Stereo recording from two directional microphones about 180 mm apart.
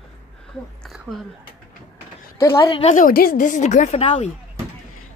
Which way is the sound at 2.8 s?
45° left (ahead or behind).